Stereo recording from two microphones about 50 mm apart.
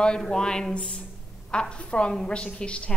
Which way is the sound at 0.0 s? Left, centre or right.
Centre.